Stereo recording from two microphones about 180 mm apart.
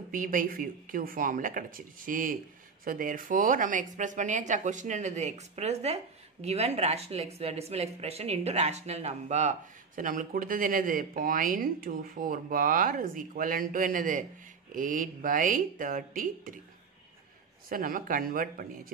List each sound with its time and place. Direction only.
0.1 s speech: 50° right (ahead or behind)
17.6 s speech: 50° right (ahead or behind)